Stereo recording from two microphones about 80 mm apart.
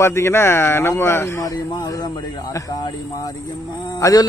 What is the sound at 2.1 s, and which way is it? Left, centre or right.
Speech, left.